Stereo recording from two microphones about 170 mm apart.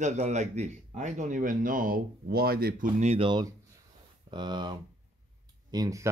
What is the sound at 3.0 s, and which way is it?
Speech, 35° right (ahead or behind).